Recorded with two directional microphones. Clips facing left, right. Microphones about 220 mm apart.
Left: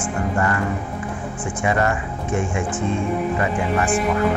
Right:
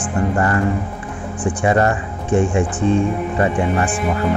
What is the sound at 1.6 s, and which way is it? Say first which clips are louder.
Speech: right 4 dB; 35° right (ahead or behind).